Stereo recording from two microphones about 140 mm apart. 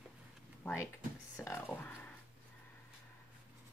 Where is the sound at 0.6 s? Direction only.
15° left (ahead or behind).